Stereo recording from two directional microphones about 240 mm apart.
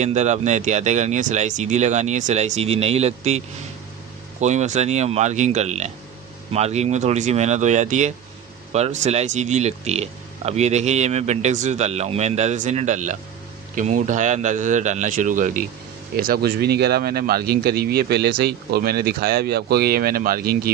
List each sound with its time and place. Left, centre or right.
0.0 s speech: right